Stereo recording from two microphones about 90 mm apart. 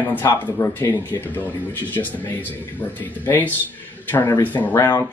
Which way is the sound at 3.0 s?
20° left (ahead or behind).